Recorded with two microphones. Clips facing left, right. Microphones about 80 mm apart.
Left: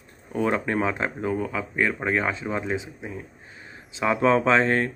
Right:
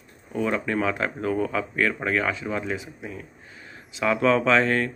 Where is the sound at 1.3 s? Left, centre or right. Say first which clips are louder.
Right 2 dB; centre.